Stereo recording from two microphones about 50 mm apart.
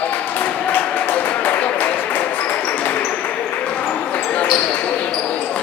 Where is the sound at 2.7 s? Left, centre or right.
Left.